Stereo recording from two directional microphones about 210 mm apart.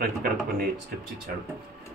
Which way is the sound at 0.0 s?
45° right (ahead or behind).